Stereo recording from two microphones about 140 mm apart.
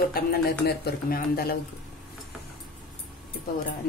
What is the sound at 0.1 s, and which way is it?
A woman's voice, 90° left.